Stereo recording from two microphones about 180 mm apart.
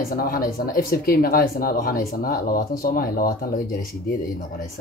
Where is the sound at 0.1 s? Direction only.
55° left (ahead or behind).